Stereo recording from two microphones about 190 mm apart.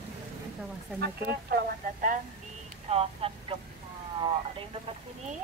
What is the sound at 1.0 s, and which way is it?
Speech, 55° right (ahead or behind).